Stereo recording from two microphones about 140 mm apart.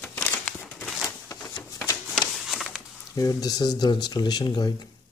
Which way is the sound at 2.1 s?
Centre (ahead or behind).